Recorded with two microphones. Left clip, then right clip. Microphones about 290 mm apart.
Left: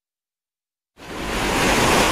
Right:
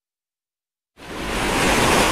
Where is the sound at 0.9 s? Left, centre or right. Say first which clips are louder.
Even; centre.